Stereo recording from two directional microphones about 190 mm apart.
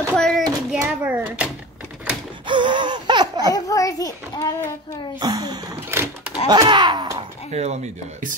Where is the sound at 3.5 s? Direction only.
20° left (ahead or behind).